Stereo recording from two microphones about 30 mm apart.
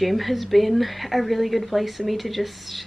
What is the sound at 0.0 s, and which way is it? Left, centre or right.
Speech, centre.